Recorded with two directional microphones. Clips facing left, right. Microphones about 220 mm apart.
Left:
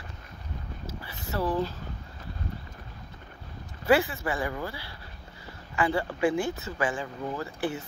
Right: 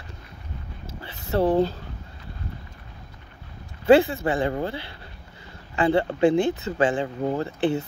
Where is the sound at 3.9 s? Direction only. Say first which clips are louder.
Right 7 dB; 25° right (ahead or behind).